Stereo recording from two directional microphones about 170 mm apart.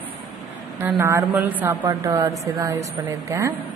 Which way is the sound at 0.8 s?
15° right (ahead or behind).